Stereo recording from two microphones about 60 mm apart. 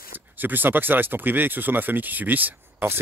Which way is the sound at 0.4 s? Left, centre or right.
Right.